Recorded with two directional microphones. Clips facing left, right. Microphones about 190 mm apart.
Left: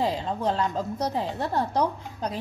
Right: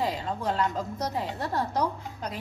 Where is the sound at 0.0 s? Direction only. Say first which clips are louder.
Left 3 dB; 30° left (ahead or behind).